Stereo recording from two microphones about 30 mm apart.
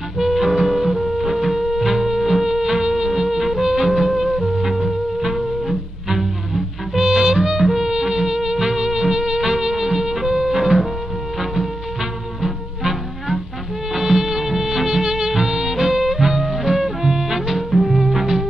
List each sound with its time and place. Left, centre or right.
0.2 s music: centre
12.4 s music: centre
13.9 s music of bollywood: centre
17.6 s music: centre